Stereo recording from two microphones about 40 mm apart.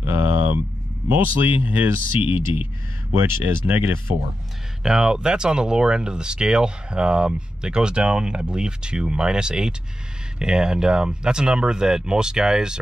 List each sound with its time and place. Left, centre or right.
0.0 s a sound: right
1.0 s speech: right
3.1 s speech: right
4.8 s speech: centre